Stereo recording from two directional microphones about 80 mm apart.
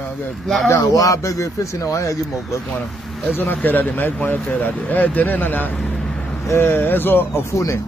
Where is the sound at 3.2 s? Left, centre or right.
Left.